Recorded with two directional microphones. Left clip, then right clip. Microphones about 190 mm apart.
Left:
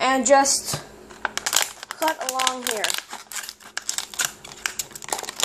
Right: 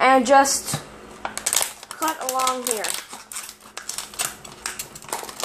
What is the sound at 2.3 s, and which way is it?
Speech, 25° left (ahead or behind).